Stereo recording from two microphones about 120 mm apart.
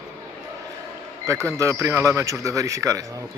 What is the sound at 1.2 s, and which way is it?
A man's voice, 25° right (ahead or behind).